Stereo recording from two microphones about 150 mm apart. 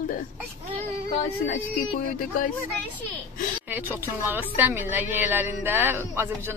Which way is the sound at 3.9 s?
15° right (ahead or behind).